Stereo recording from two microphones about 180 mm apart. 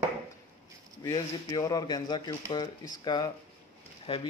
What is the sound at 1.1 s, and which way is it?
Speech, 20° left (ahead or behind).